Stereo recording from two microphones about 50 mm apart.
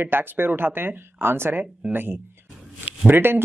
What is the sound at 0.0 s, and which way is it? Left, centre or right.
Speech, right.